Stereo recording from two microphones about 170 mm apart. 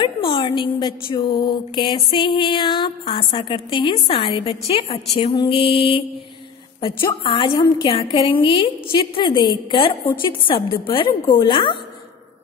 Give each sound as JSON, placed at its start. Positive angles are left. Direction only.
{"t": 0.0, "sound": "speech", "side_deg": 30}
{"t": 5.1, "sound": "mantra", "side_deg": 30}
{"t": 7.2, "sound": "speech", "side_deg": 30}